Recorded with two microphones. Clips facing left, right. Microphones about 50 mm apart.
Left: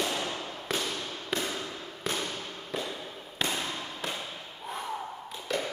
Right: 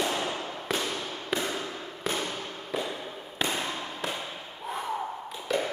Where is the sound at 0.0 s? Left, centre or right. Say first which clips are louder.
Right 2 dB; centre.